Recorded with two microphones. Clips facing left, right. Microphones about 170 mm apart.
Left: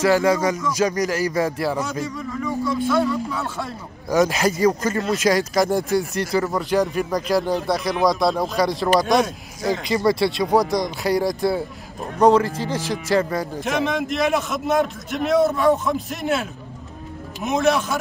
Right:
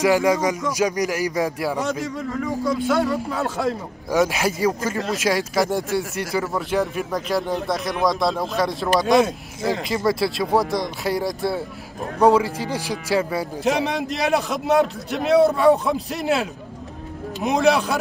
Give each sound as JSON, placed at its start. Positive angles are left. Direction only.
{"t": 0.0, "sound": "music", "side_deg": -15}
{"t": 2.6, "sound": "speech", "side_deg": -45}
{"t": 4.1, "sound": "speech", "side_deg": -5}
{"t": 12.2, "sound": "music", "side_deg": -10}
{"t": 13.7, "sound": "a man's voice", "side_deg": -35}
{"t": 17.5, "sound": "a man's voice", "side_deg": -35}